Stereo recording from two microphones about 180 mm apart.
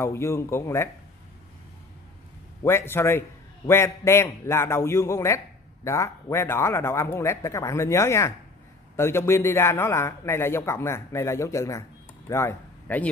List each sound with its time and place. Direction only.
0.0 s a man's voice: 15° left (ahead or behind)
2.6 s a man's voice: 15° left (ahead or behind)